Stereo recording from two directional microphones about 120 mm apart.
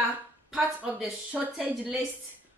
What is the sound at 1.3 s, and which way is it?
Speech, 15° right (ahead or behind).